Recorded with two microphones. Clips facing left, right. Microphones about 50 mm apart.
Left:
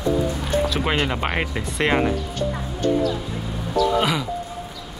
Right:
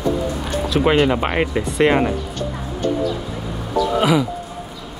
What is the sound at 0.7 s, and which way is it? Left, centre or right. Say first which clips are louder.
Speech: right 7 dB; centre.